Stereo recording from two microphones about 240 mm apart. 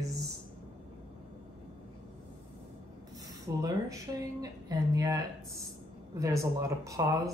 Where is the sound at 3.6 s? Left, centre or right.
Centre.